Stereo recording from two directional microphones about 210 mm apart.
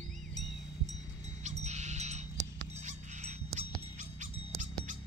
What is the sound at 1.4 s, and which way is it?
Music, 35° right (ahead or behind).